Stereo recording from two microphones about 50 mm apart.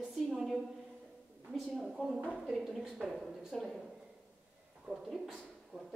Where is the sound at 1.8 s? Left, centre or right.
Centre.